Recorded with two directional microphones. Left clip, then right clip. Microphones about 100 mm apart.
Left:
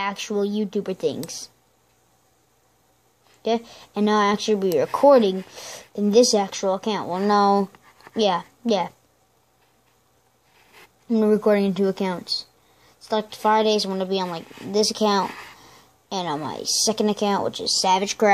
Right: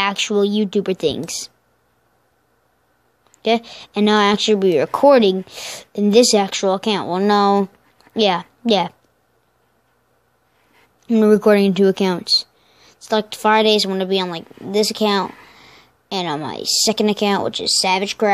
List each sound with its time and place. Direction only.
0.0 s speech: 65° right (ahead or behind)
3.4 s speech: 50° right (ahead or behind)
11.1 s speech: 80° right; by 17.7 s 50° right (ahead or behind)
17.7 s speech: 30° right (ahead or behind)
18.0 s a woman's voice: 20° right (ahead or behind)